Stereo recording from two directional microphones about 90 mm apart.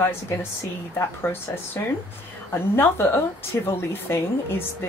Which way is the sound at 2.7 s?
25° left (ahead or behind).